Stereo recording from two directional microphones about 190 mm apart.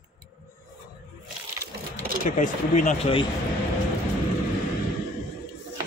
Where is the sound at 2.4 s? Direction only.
40° left (ahead or behind).